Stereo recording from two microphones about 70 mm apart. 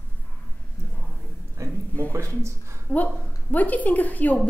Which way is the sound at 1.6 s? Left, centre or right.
Right.